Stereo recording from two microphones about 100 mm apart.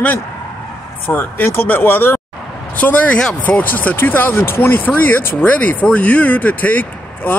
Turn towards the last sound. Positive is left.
turn(degrees=15)  # may be behind; listen again after turning